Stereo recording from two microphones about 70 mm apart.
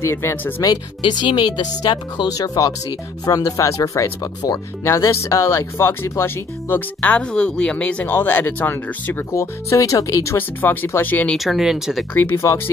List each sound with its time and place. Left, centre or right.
0.0 s speech: left
0.7 s speech: left
3.6 s speech: left
4.8 s speech: left
7.0 s speech: centre
9.3 s speech: left
10.3 s speech: left
11.3 s speech: centre
12.1 s speech: left